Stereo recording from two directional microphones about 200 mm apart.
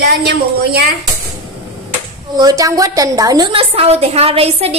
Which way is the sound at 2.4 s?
20° right (ahead or behind).